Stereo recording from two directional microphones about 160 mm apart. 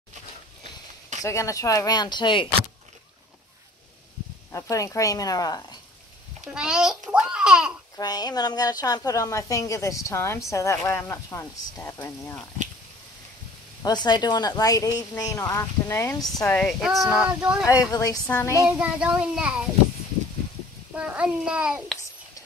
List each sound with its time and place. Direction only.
1.2 s a woman's voice: 20° left (ahead or behind)
4.5 s a woman's voice: 20° left (ahead or behind)
6.4 s male singing: 5° right (ahead or behind)
8.0 s a woman's voice: 25° left (ahead or behind)
13.8 s a woman's voice: 25° left (ahead or behind)
16.6 s male singing: centre (ahead or behind)
17.6 s a woman's voice: 20° left (ahead or behind)
18.6 s male singing: 5° right (ahead or behind)
20.9 s a child's voice: 5° right (ahead or behind)